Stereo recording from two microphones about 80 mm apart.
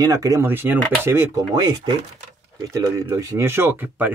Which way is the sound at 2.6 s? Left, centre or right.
Right.